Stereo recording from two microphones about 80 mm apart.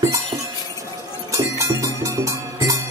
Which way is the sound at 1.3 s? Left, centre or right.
Right.